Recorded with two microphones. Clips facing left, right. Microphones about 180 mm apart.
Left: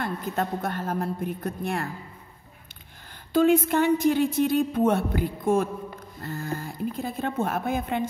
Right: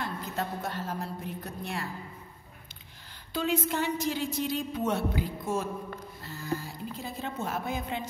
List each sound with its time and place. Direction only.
0.0 s a woman's voice: 55° left (ahead or behind)
3.3 s a woman's voice: 50° left (ahead or behind)